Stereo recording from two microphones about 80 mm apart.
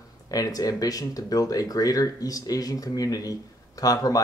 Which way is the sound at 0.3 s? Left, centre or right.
Left.